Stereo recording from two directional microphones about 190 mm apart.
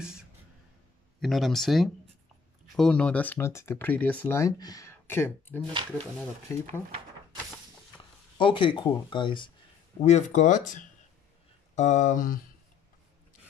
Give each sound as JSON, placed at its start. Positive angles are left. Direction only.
{"t": 0.0, "sound": "a sound", "side_deg": -5}
{"t": 1.2, "sound": "speech", "side_deg": 0}
{"t": 8.4, "sound": "speech", "side_deg": 25}
{"t": 9.9, "sound": "speech", "side_deg": 35}